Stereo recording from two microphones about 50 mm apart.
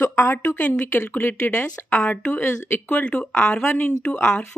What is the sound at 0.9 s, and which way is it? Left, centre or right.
Speech, left.